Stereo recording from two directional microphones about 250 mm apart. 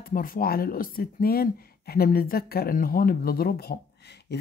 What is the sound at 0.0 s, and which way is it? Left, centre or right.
Speech, left.